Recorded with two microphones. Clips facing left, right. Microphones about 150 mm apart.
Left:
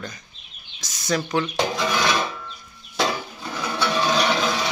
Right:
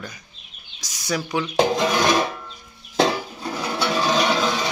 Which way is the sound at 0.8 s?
10° right (ahead or behind).